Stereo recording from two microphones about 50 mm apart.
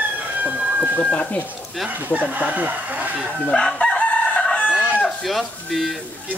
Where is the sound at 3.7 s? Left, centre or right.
Left.